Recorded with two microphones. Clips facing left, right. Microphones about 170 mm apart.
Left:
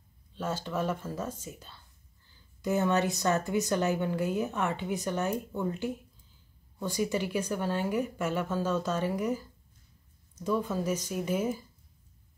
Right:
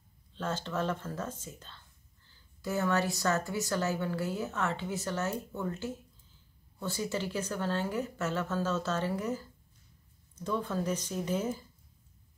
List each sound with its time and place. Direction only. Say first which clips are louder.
0.3 s a woman's voice: left 2 dB; 10° left (ahead or behind)